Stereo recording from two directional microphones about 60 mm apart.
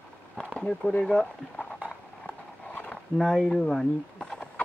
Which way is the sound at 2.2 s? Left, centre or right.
Left.